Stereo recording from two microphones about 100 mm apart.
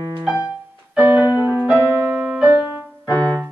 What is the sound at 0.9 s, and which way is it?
Keyboard, 10° right (ahead or behind).